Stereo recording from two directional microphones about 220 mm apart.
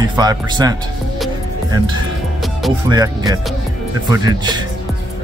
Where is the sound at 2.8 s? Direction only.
15° right (ahead or behind).